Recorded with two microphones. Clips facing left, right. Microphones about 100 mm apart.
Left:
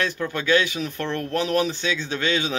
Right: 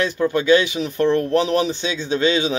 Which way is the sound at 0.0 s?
20° right (ahead or behind).